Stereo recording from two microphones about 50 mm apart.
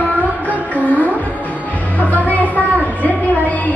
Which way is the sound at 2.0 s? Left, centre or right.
Left.